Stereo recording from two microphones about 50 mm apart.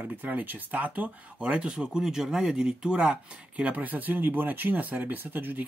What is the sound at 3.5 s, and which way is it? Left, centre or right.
Speech, right.